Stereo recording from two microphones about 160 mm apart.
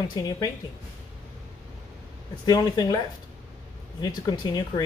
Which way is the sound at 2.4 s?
25° left (ahead or behind).